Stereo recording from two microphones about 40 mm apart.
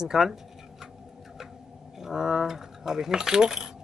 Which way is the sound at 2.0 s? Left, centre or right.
Centre.